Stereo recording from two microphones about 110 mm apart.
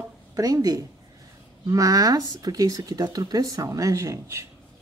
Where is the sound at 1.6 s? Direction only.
30° right (ahead or behind).